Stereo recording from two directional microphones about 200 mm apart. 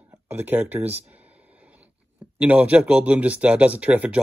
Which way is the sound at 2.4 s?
5° right (ahead or behind).